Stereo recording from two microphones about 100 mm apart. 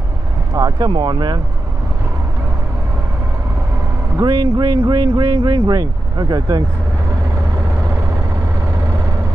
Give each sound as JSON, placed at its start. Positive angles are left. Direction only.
{"t": 0.6, "sound": "speech", "side_deg": -35}
{"t": 4.2, "sound": "speech", "side_deg": -40}